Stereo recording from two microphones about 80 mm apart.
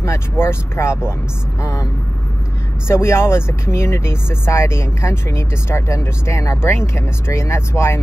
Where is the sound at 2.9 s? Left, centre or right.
Left.